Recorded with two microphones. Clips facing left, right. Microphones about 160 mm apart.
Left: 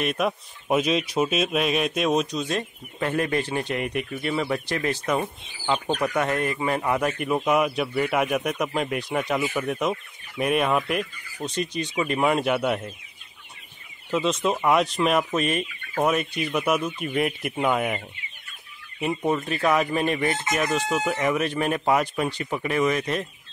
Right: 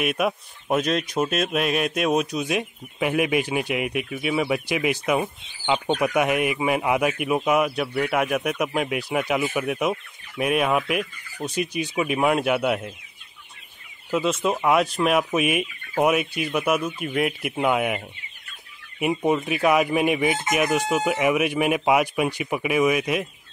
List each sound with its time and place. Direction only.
0.0 s speech: 5° right (ahead or behind)
14.1 s speech: centre (ahead or behind)